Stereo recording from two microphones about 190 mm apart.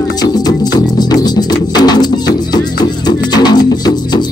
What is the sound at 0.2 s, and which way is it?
Music, 20° left (ahead or behind).